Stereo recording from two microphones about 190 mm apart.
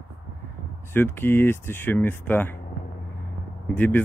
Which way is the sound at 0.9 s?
10° left (ahead or behind).